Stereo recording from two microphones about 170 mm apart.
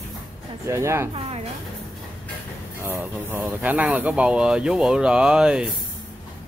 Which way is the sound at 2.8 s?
15° right (ahead or behind).